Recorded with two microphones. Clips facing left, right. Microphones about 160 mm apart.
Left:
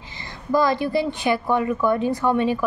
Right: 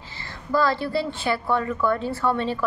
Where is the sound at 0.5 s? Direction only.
15° left (ahead or behind).